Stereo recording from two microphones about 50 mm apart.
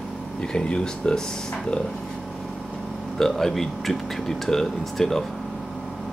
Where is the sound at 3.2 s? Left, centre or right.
Centre.